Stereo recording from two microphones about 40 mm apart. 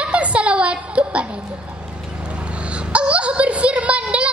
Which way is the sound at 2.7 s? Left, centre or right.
Right.